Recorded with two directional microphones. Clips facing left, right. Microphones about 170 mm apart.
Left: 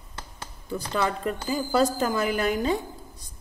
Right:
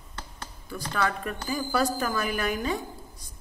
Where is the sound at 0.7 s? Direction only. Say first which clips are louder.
Left 2 dB; 20° left (ahead or behind).